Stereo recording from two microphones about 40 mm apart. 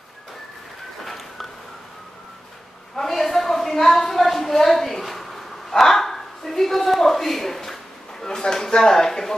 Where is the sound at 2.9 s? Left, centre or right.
Centre.